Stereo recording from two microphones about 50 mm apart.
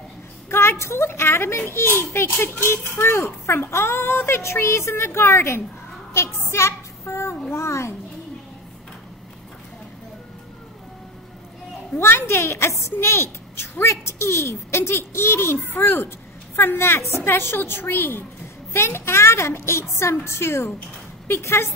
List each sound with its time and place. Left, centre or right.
0.5 s a child's voice: left
6.5 s child singing: left
7.5 s speech: left
12.0 s a child's voice: left
12.9 s a child's voice: left
16.8 s a woman's voice: left
18.7 s a child's voice: left